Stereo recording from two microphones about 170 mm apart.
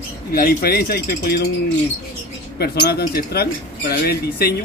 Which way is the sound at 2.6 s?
65° left (ahead or behind).